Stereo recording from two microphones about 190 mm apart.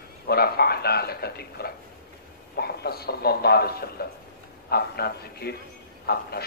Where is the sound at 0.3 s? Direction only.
55° left (ahead or behind).